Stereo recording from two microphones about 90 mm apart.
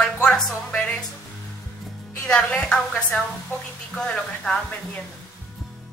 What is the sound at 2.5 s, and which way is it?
Speech, 15° left (ahead or behind).